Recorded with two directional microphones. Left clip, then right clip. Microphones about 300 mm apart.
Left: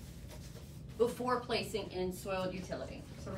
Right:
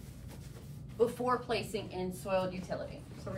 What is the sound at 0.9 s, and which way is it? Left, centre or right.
A woman's voice, centre.